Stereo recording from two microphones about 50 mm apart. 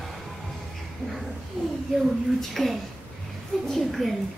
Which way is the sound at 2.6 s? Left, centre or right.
Centre.